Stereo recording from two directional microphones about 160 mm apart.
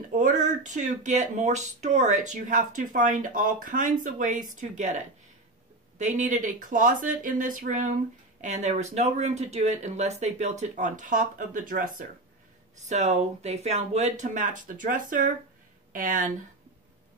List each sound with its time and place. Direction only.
0.1 s speech: 55° right (ahead or behind)
12.7 s speech: 45° right (ahead or behind)